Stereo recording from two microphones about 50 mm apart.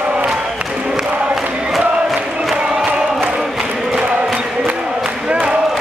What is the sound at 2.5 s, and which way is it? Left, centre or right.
Chant, right.